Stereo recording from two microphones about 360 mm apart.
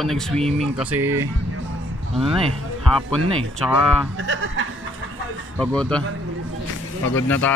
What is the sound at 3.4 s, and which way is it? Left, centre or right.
Speech, centre.